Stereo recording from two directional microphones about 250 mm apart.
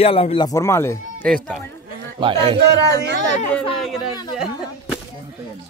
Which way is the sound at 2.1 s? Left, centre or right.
Centre.